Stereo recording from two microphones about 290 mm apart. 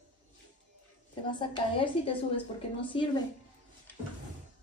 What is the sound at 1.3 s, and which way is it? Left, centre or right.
A woman's voice, centre.